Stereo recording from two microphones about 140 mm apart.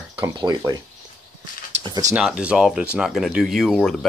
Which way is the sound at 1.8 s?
30° right (ahead or behind).